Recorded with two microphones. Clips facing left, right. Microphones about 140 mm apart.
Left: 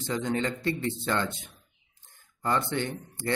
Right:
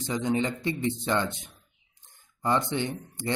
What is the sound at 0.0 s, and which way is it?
A man's voice, 15° right (ahead or behind).